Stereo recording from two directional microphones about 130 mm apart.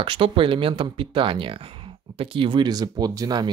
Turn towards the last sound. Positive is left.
turn(degrees=-30)  # may be behind; listen again after turning